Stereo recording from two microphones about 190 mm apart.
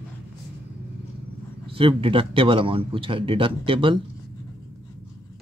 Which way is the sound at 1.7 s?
25° right (ahead or behind).